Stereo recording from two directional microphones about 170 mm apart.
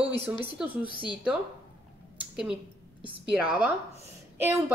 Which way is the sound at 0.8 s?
30° left (ahead or behind).